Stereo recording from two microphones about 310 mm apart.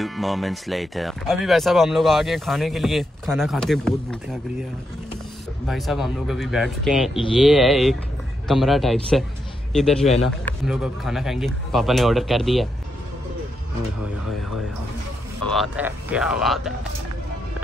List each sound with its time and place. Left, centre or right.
0.0 s speech: centre
5.7 s speech: centre
15.5 s speech: centre